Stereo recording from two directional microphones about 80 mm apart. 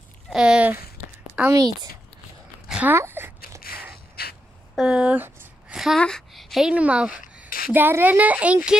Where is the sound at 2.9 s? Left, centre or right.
Right.